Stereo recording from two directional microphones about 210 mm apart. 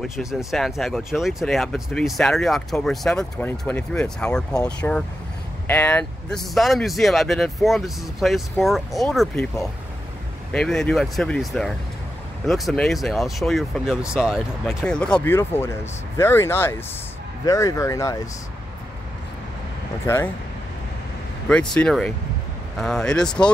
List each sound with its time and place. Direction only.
0.1 s speech: centre (ahead or behind); by 18.3 s 15° left (ahead or behind)
21.5 s speech: 5° left (ahead or behind)